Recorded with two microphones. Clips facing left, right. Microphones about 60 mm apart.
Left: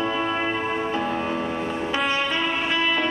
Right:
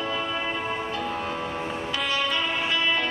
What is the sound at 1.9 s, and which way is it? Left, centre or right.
Music, left.